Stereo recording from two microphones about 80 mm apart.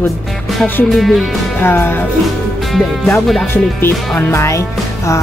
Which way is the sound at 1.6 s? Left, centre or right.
Left.